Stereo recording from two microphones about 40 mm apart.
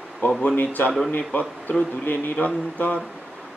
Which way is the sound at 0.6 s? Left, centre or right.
Left.